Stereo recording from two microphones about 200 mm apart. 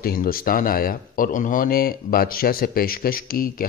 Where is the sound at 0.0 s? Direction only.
45° left (ahead or behind).